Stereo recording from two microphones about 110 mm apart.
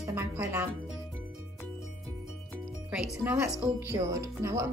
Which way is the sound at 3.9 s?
25° right (ahead or behind).